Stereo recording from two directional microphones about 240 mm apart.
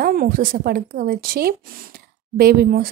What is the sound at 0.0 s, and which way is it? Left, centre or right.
Speech, right.